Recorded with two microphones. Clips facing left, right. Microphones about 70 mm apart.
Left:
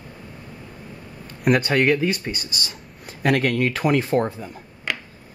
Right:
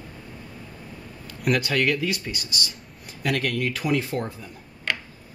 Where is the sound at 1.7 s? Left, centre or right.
Left.